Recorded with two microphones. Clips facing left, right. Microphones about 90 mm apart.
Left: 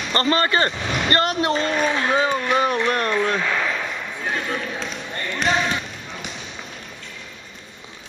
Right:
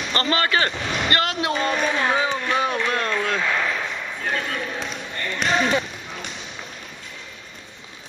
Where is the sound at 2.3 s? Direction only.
15° left (ahead or behind).